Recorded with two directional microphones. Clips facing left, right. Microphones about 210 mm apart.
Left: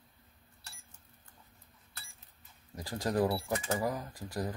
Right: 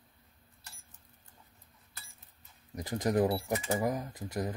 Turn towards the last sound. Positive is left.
turn(degrees=-20)  # may be behind; listen again after turning